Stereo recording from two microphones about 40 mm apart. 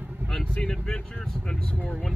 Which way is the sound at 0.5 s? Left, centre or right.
Centre.